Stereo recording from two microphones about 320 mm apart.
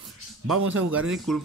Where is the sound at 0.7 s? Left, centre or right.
Right.